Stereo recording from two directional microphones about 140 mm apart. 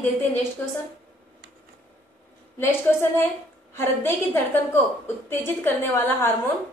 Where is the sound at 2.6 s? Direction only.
15° left (ahead or behind).